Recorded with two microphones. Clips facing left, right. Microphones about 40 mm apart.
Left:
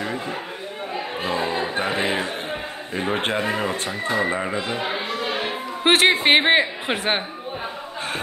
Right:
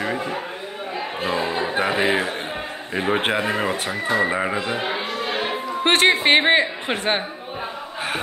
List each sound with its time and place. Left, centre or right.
0.0 s chatter: right
1.2 s music: right
1.8 s music: centre
2.9 s speech: centre
5.9 s a woman's voice: centre